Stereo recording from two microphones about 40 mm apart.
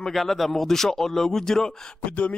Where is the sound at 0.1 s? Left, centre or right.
Centre.